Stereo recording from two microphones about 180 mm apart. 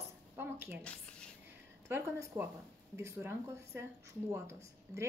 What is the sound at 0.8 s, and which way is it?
Speech, 5° left (ahead or behind).